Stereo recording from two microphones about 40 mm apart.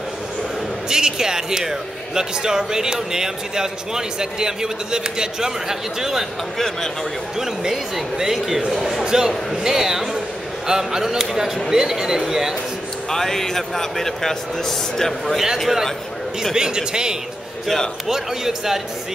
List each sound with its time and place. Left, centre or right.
0.8 s a man's voice: centre
7.3 s a man's voice: centre
13.1 s a man's voice: centre
16.5 s a man's voice: centre